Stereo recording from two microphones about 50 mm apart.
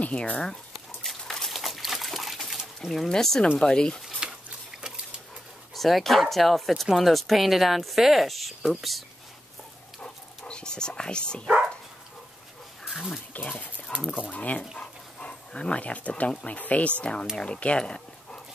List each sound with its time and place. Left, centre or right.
0.0 s speech: left
0.7 s a sound: centre
3.1 s speech: centre
4.2 s a sound: centre
5.8 s speech: centre
10.0 s dog: left
12.9 s speech: centre
13.3 s dog: left
14.2 s speech: left
14.8 s speech: left
17.0 s speech: centre